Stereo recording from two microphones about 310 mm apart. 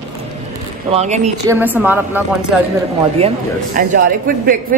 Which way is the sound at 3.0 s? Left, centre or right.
Centre.